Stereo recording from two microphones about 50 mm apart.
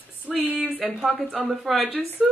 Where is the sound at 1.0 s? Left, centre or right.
Centre.